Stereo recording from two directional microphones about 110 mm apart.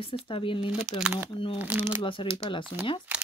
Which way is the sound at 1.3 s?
55° left (ahead or behind).